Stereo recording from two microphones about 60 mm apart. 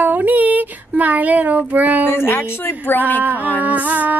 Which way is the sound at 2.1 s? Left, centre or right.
Left.